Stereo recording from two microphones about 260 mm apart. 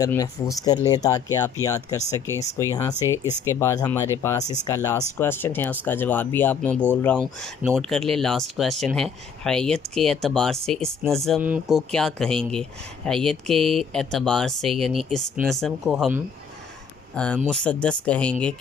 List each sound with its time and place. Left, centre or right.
0.0 s speech: centre